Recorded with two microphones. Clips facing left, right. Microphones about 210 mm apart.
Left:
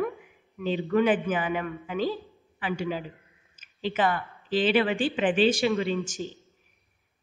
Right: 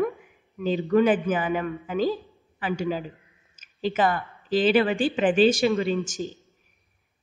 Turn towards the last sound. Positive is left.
turn(degrees=-40)  # may be behind; listen again after turning